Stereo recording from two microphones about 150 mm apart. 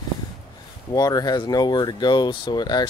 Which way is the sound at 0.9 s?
25° left (ahead or behind).